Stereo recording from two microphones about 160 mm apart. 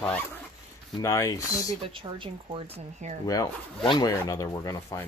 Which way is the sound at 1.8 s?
30° right (ahead or behind).